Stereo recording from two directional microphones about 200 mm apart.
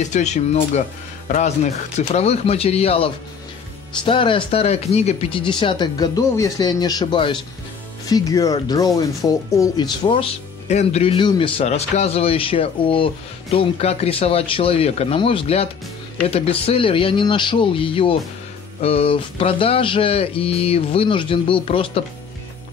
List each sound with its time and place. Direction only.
0.0 s speech: 35° left (ahead or behind)